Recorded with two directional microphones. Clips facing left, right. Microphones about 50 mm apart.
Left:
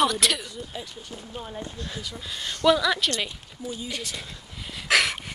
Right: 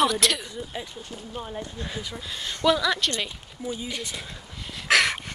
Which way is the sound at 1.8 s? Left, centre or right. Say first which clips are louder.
Right 2 dB; centre.